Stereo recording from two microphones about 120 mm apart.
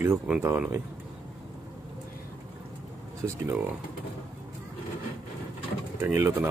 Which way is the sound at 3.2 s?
15° right (ahead or behind).